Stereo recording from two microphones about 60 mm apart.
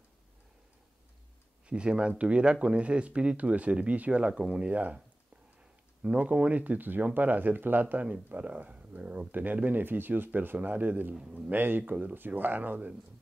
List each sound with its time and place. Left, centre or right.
1.7 s speech: centre